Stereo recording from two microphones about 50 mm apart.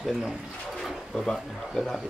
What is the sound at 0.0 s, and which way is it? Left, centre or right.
Speech, centre.